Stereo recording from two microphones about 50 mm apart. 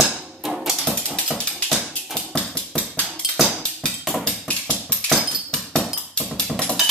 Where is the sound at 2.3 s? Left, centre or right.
Centre.